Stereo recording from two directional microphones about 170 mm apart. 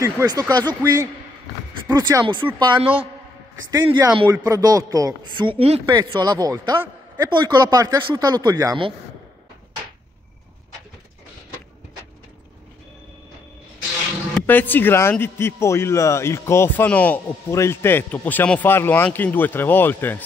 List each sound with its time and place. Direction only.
0.0 s speech: 20° right (ahead or behind)
14.4 s a man's voice: 10° left (ahead or behind)